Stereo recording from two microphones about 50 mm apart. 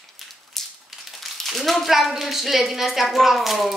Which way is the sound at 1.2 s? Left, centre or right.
Centre.